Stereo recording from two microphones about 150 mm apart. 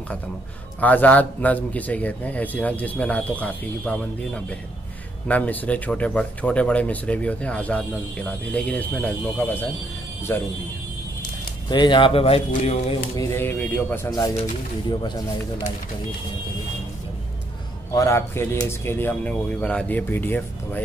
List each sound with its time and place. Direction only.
0.7 s speech: 10° left (ahead or behind)
11.7 s speech: 30° left (ahead or behind)
13.1 s speech: 20° left (ahead or behind)
14.9 s speech: 30° left (ahead or behind)
17.9 s speech: 20° left (ahead or behind)